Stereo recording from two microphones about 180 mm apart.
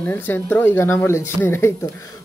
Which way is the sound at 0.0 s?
10° left (ahead or behind).